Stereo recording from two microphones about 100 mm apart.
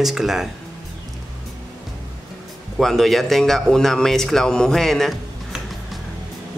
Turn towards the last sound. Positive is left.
turn(degrees=0)  # may be behind; listen again after turning